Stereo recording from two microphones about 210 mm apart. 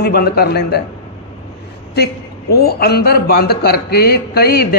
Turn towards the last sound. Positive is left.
turn(degrees=50)  # may be behind; listen again after turning